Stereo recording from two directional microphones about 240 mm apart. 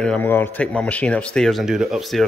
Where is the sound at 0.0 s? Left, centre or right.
Centre.